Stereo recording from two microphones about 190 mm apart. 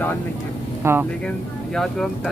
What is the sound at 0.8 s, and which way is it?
Speech, 15° right (ahead or behind).